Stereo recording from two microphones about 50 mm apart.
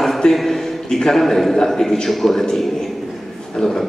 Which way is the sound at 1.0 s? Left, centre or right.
Centre.